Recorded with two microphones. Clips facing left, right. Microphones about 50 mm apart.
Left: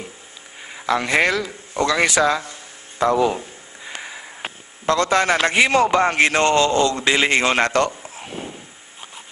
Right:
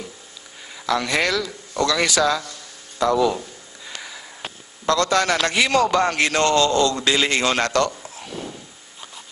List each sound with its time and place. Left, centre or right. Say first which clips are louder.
0.7 s a man's voice: left 3 dB; left